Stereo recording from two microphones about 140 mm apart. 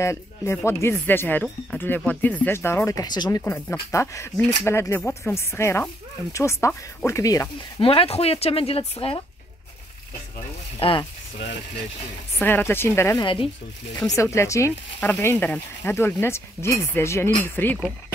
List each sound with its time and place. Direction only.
0.0 s speech: 20° left (ahead or behind)
7.8 s speech: 45° left (ahead or behind)
10.8 s speech: 40° left (ahead or behind)
12.4 s speech: 15° left (ahead or behind)
13.2 s speech: 35° left (ahead or behind)
13.9 s speech: 25° left (ahead or behind)